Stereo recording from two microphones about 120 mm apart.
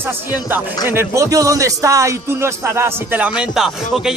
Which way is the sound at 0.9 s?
20° right (ahead or behind).